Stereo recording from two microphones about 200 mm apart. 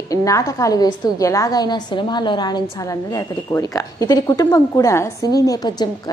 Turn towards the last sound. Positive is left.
turn(degrees=20)  # may be behind; listen again after turning